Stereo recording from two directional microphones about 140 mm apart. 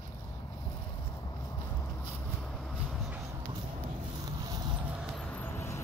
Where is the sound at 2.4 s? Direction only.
5° left (ahead or behind).